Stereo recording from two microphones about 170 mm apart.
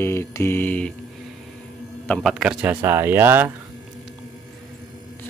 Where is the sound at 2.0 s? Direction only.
Centre (ahead or behind).